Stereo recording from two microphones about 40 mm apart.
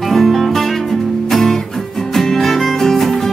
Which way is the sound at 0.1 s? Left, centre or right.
Centre.